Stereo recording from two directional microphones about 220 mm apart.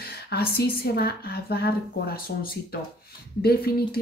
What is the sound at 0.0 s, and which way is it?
A woman's voice, 45° left (ahead or behind).